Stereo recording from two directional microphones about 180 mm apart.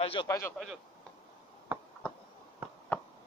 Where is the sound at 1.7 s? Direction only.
10° right (ahead or behind).